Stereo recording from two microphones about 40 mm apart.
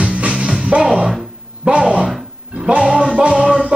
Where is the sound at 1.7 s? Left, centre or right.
Right.